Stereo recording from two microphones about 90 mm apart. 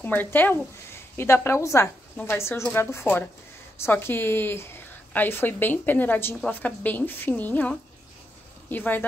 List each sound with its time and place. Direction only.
0.0 s a woman's voice: 20° left (ahead or behind)